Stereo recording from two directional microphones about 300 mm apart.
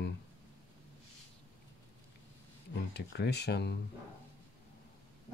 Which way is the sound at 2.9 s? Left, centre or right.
Left.